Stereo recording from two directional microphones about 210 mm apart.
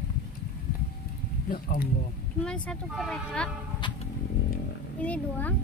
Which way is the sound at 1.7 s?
40° left (ahead or behind).